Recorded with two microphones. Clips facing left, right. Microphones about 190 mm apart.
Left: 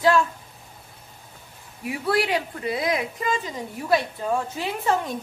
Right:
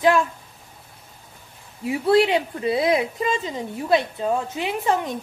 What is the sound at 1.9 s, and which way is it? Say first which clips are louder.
A woman's voice: right 6 dB; 25° right (ahead or behind).